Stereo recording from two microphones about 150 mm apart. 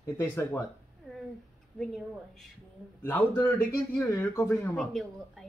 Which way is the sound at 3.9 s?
20° left (ahead or behind).